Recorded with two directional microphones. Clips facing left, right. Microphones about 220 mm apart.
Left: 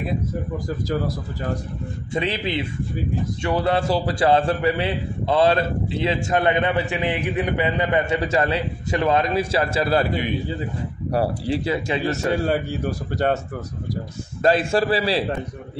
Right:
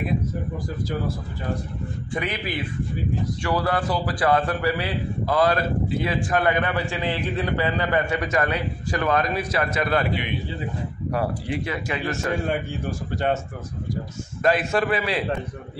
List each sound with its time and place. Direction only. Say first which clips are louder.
2.1 s a man's voice: left 4 dB; 25° left (ahead or behind)
14.4 s a man's voice: left 3 dB; 30° left (ahead or behind)